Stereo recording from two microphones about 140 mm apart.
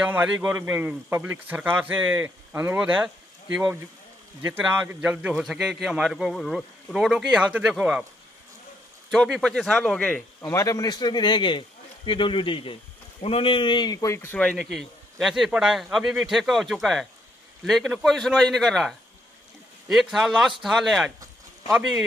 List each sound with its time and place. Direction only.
0.0 s a man's voice: 10° right (ahead or behind)
9.1 s a man's voice: 5° left (ahead or behind)
10.4 s a man's voice: 20° left (ahead or behind); by 21.1 s centre (ahead or behind)